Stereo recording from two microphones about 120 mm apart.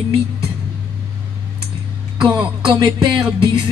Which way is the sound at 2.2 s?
40° right (ahead or behind).